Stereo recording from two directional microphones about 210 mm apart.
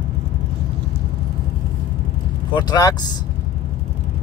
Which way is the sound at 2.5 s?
20° left (ahead or behind).